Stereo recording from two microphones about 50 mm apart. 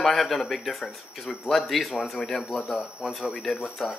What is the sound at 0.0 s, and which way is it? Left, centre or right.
A man's voice, centre.